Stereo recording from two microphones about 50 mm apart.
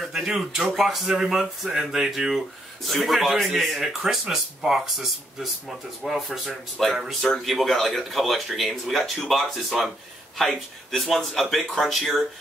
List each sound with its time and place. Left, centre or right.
0.1 s speech: centre